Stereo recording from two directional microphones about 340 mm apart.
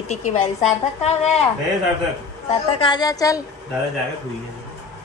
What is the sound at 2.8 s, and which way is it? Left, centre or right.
Speech, centre.